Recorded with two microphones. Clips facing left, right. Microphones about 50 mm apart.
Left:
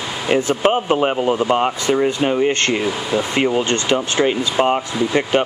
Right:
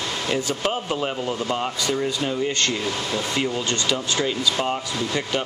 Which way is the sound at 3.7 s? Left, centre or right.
Left.